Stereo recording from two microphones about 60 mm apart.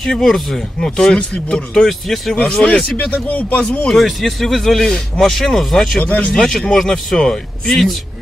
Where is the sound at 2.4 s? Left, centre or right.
Centre.